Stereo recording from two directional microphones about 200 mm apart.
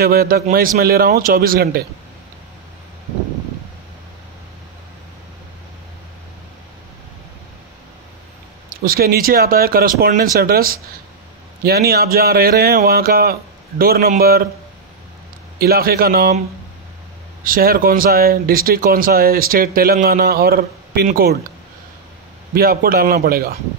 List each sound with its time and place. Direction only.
0.0 s speech: 50° right (ahead or behind)
8.6 s speech: 45° right (ahead or behind)
15.6 s speech: 50° right (ahead or behind)
17.4 s speech: 45° right (ahead or behind)
22.5 s speech: 45° right (ahead or behind)